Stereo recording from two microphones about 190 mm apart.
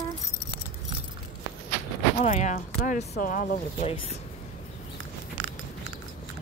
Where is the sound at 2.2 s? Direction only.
40° left (ahead or behind).